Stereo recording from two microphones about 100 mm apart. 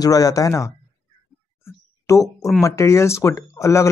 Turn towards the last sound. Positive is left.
turn(degrees=30)  # may be behind; listen again after turning